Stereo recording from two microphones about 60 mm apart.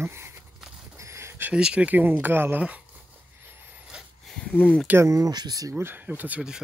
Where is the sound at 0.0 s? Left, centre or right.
Right.